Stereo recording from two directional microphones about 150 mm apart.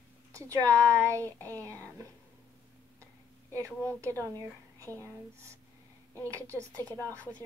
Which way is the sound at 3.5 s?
20° right (ahead or behind).